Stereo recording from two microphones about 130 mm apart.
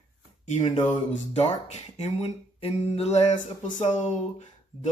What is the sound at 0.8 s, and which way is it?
Speech, 65° left (ahead or behind).